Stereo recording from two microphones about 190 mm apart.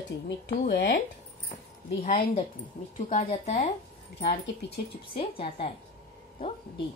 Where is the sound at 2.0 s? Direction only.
35° left (ahead or behind).